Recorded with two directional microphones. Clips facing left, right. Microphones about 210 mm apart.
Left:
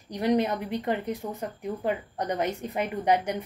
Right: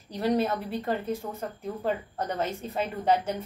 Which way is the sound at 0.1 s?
15° left (ahead or behind).